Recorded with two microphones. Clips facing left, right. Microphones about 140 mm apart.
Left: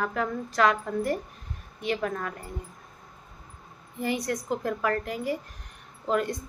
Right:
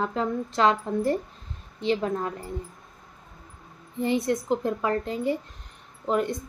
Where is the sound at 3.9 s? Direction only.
25° right (ahead or behind).